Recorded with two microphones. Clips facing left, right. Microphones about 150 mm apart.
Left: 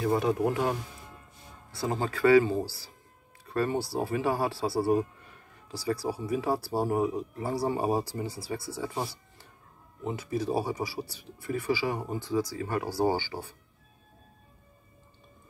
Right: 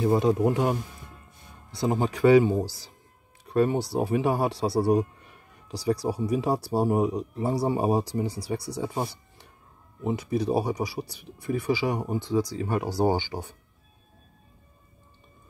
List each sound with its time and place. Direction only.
0.0 s speech: 25° right (ahead or behind)